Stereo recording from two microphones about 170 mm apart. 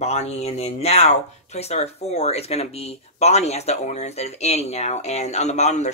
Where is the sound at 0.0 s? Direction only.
40° left (ahead or behind).